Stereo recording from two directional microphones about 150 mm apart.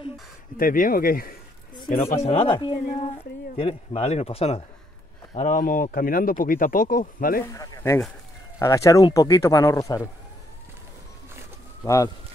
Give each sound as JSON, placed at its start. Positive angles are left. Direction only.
{"t": 0.6, "sound": "speech", "side_deg": 70}
{"t": 2.1, "sound": "speech", "side_deg": 40}
{"t": 2.8, "sound": "a woman's voice", "side_deg": 55}
{"t": 5.4, "sound": "speech", "side_deg": 60}
{"t": 7.5, "sound": "speech", "side_deg": 25}
{"t": 11.8, "sound": "speech", "side_deg": 20}